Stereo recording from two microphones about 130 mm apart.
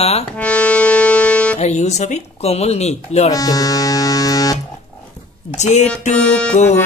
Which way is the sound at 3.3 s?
25° left (ahead or behind).